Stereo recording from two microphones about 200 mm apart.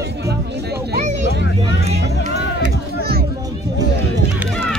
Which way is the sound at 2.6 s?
50° right (ahead or behind).